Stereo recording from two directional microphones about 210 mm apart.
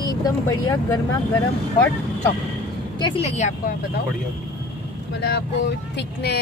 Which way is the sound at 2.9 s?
25° left (ahead or behind).